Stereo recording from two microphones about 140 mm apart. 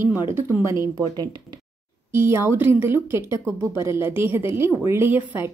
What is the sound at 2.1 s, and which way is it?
A woman's voice, 15° right (ahead or behind).